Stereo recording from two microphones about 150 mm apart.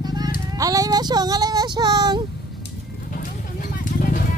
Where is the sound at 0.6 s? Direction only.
25° right (ahead or behind).